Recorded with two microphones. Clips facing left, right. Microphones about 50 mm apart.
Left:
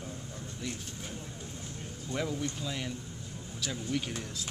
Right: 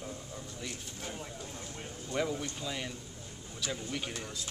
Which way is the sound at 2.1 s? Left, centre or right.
Centre.